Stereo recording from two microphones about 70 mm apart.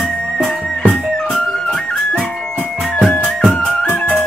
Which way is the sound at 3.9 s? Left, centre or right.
Left.